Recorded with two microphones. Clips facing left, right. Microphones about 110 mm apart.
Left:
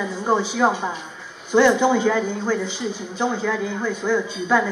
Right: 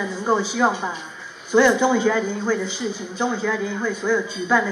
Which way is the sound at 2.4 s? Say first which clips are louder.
Even; 50° left (ahead or behind).